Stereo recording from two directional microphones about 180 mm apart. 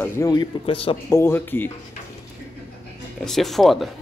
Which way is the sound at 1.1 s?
15° left (ahead or behind).